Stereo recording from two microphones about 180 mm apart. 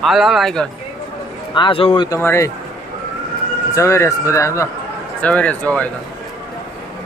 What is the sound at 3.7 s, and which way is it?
Speech, 15° left (ahead or behind).